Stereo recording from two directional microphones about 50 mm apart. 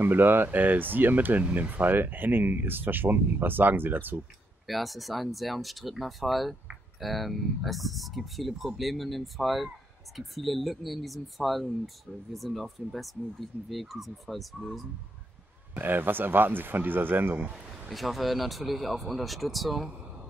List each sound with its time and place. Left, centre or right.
0.0 s speech: right
4.6 s speech: centre
15.7 s speech: right
17.8 s speech: centre